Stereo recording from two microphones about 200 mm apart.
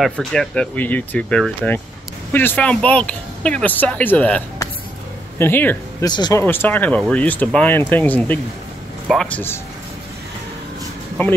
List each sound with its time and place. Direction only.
0.0 s speech: centre (ahead or behind)
6.0 s speech: 20° left (ahead or behind)
6.4 s speech: 10° left (ahead or behind)